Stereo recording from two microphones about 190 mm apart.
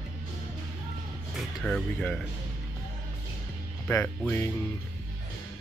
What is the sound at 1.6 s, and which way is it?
Speech, 5° left (ahead or behind).